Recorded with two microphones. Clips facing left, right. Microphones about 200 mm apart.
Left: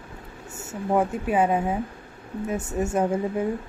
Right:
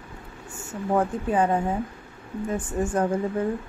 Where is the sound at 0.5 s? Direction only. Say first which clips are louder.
Left 1 dB; 10° left (ahead or behind).